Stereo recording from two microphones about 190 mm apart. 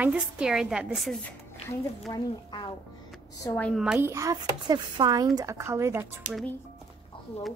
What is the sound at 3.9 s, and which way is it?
Speech, 15° right (ahead or behind).